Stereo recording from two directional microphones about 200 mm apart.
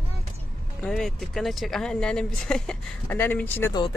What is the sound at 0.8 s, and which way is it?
Speech, centre (ahead or behind).